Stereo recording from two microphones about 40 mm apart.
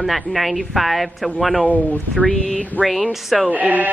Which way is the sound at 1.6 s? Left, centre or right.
Left.